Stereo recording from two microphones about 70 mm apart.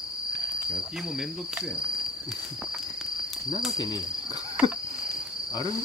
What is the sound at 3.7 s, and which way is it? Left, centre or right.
Insect, left.